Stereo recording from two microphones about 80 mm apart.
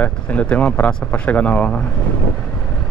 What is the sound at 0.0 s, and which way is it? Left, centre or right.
Speech, centre.